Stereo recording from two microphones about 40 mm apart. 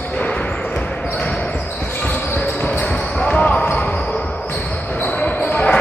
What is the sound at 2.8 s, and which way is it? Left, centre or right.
Basketball bounce, left.